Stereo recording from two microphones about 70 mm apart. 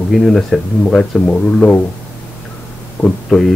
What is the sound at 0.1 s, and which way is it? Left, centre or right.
Speech, centre.